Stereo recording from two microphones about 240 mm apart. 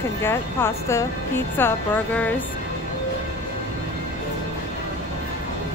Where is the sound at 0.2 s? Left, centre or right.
Centre.